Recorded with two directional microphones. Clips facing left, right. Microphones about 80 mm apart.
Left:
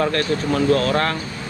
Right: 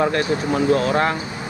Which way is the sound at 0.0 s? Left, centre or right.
Centre.